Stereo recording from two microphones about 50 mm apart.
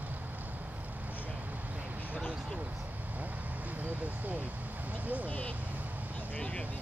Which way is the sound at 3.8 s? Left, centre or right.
Right.